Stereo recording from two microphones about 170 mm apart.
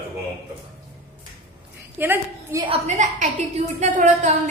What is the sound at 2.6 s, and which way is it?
A woman's voice, 40° right (ahead or behind).